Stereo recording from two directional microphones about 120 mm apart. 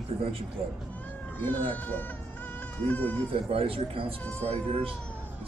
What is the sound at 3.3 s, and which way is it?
Speech, 50° right (ahead or behind).